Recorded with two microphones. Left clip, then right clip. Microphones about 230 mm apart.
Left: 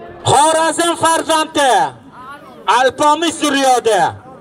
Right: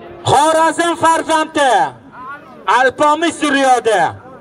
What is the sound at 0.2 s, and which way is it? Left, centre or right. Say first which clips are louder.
A man's voice: even; left.